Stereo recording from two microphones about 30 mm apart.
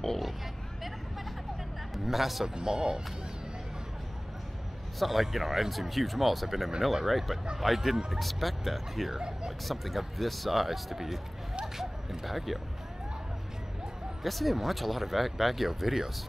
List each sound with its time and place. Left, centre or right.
2.0 s speech: centre
2.4 s speech: right
4.9 s speech: centre
9.1 s speech: right
9.7 s speech: centre
14.2 s speech: centre